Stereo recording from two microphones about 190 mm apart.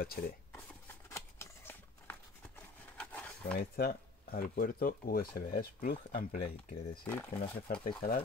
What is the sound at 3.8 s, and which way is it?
Speech, 55° left (ahead or behind).